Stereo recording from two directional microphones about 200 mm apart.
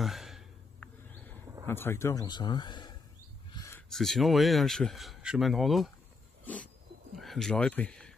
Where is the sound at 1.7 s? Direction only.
10° left (ahead or behind).